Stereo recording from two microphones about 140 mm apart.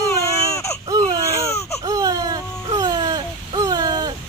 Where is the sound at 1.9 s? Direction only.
25° right (ahead or behind).